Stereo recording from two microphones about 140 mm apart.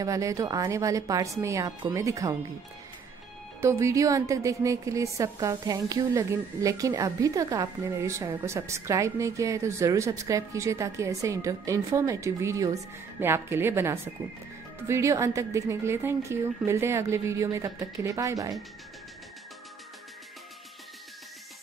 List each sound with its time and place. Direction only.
0.0 s a woman's voice: 25° right (ahead or behind)
3.6 s a woman's voice: 20° right (ahead or behind)